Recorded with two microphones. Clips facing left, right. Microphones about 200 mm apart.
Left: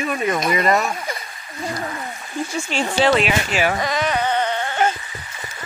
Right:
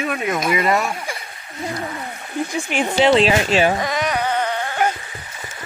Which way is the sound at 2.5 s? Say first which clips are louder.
Right 1 dB; 15° right (ahead or behind).